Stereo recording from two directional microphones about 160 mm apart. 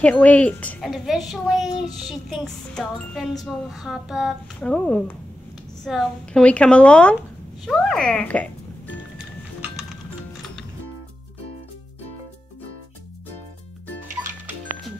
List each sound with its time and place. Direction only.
0.0 s a woman's voice: 10° left (ahead or behind)
0.8 s a woman's voice: centre (ahead or behind)
14.2 s music: 15° right (ahead or behind)